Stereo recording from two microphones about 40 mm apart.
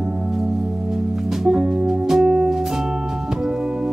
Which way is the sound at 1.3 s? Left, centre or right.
Centre.